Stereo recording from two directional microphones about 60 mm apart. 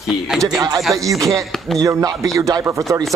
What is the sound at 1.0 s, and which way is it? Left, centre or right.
Speech, right.